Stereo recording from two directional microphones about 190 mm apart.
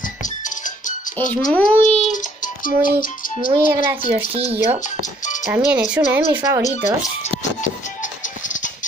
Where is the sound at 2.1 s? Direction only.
45° left (ahead or behind).